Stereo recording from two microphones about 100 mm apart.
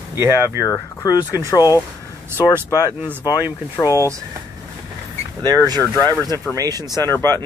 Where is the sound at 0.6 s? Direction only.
35° left (ahead or behind).